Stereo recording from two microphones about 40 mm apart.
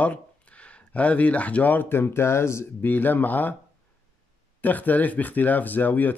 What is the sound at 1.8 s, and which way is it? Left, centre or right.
Speech, left.